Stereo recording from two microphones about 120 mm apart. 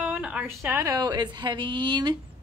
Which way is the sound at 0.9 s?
30° right (ahead or behind).